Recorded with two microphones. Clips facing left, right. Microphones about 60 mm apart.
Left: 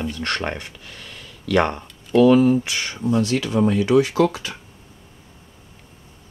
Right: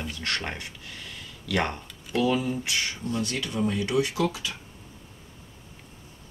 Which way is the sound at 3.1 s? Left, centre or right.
Left.